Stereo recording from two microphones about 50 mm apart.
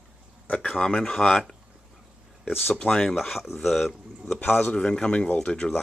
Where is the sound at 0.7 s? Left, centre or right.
Centre.